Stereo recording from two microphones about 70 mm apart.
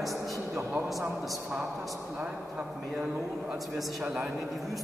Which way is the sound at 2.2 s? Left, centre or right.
Centre.